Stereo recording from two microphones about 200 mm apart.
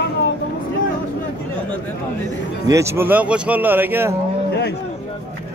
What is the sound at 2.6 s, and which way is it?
Speech, 15° right (ahead or behind).